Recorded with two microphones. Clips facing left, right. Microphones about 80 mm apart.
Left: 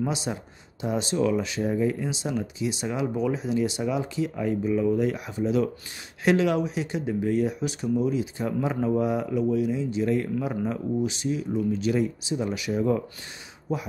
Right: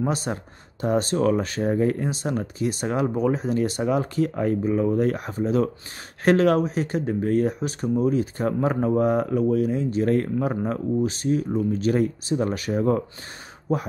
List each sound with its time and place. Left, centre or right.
0.0 s speech: right